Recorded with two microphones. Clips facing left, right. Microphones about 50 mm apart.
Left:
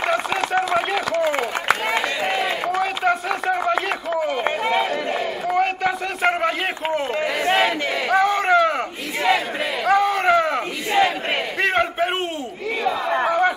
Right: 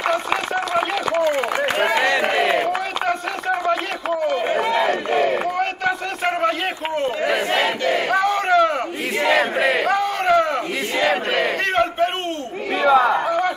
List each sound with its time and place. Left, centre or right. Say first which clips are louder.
1.8 s a sound: right 5 dB; right
2.8 s chopping: left 2 dB; centre
4.7 s crowd: right 3 dB; right
7.4 s battle cry: left 2 dB; left
8.1 s a sound: left 3 dB; centre
9.2 s battle cry: right 3 dB; right
9.8 s battle cry: left 1 dB; centre
11.0 s battle cry: even; right
11.6 s crowd: left 3 dB; centre
12.8 s chatter: right 9 dB; right